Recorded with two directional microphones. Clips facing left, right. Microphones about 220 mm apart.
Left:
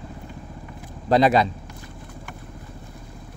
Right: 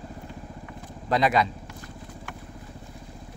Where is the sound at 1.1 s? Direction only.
35° left (ahead or behind).